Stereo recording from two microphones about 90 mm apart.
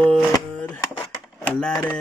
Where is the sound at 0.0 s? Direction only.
15° left (ahead or behind).